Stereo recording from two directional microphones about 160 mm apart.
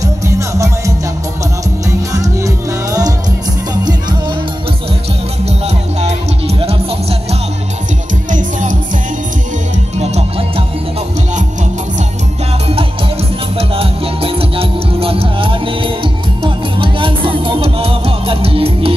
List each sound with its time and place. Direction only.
0.0 s music: 20° right (ahead or behind)
2.1 s music: 20° right (ahead or behind)
5.9 s music: 40° right (ahead or behind)
8.3 s music: 55° right (ahead or behind)
9.9 s music: 40° right (ahead or behind)
13.6 s music: 35° right (ahead or behind)